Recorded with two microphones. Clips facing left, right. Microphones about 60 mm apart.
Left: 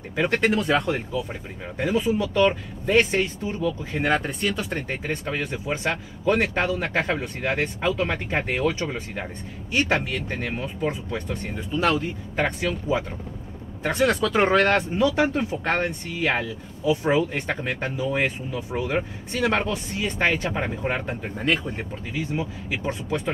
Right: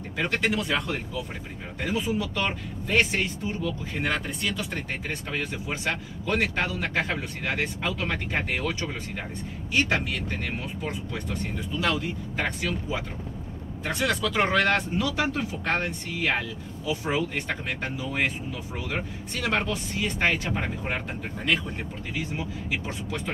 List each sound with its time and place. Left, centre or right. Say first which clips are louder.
0.1 s speech: left 5 dB; left
1.8 s speech: left 5 dB; left
2.0 s speech: left 7 dB; left
11.8 s speech: left 4 dB; left
19.4 s speech: left 4 dB; left
20.4 s speech: left 4 dB; centre
22.4 s speech: left 3 dB; left